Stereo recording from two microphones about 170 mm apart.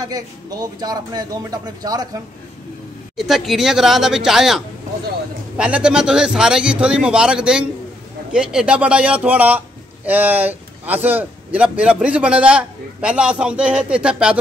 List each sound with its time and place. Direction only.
0.1 s speech: 25° right (ahead or behind)
3.2 s a man's voice: centre (ahead or behind)